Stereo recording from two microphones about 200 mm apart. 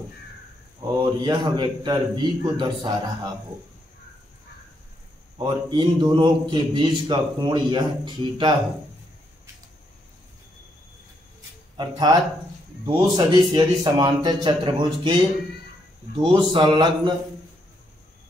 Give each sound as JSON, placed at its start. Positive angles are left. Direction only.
{"t": 0.9, "sound": "a man's voice", "side_deg": -25}
{"t": 5.4, "sound": "a man's voice", "side_deg": -25}
{"t": 11.7, "sound": "a man's voice", "side_deg": -20}
{"t": 16.2, "sound": "a man's voice", "side_deg": -25}